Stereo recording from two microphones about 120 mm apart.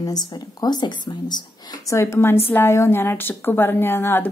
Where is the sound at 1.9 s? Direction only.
25° left (ahead or behind).